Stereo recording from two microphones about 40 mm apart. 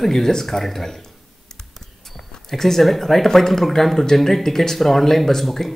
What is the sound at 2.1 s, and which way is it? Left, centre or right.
Speech, centre.